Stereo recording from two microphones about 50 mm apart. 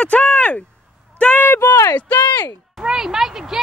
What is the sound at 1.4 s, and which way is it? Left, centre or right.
Speech, left.